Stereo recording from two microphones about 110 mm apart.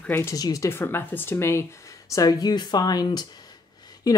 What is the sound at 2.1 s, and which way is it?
Speech, 35° left (ahead or behind).